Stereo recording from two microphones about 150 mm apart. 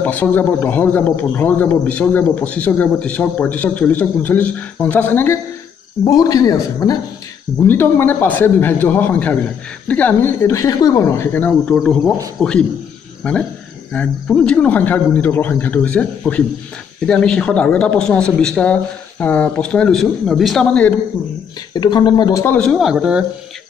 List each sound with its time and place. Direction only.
0.0 s speech: 10° left (ahead or behind)
6.0 s speech: 25° left (ahead or behind)
7.6 s speech: 15° left (ahead or behind)
11.7 s speech: centre (ahead or behind)
21.7 s speech: 30° left (ahead or behind)
22.6 s speech: centre (ahead or behind)